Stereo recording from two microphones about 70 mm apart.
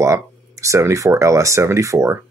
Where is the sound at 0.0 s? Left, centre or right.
Right.